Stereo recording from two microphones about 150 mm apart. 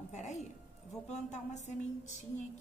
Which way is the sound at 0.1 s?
50° left (ahead or behind).